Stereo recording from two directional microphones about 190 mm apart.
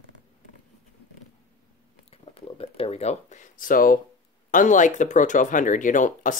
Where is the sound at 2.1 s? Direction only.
30° left (ahead or behind); by 4.0 s 45° left (ahead or behind).